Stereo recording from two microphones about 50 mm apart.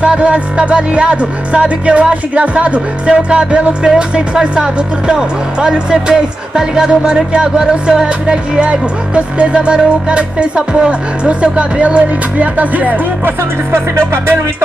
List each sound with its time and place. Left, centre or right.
0.0 s speech: right